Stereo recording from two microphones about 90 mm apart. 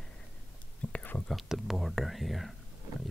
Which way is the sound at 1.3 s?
Centre (ahead or behind).